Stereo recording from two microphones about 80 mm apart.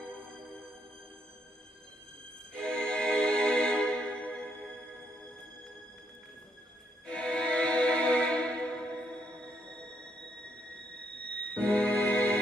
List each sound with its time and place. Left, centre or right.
0.0 s music: centre
2.5 s music: centre
7.1 s music: centre
11.2 s music: centre